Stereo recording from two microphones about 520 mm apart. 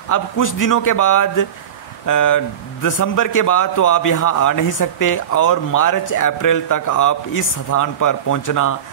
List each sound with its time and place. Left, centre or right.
0.1 s a man's voice: left